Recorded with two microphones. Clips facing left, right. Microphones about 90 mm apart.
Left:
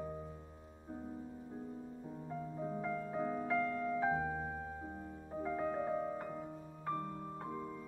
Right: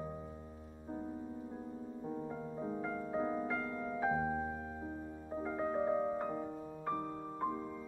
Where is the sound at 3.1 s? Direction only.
20° right (ahead or behind).